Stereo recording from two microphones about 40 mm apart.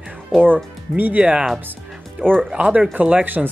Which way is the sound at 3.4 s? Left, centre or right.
Centre.